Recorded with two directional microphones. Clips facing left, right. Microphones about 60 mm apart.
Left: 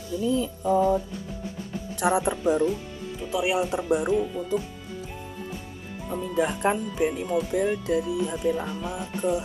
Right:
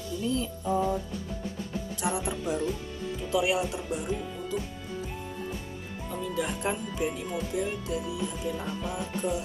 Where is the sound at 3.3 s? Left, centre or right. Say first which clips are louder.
Left 1 dB; centre.